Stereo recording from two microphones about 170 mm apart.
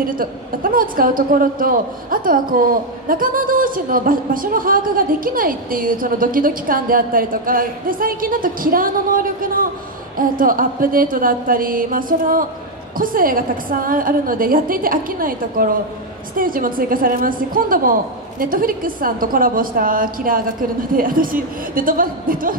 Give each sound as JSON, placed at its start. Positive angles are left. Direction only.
{"t": 0.0, "sound": "speech", "side_deg": -55}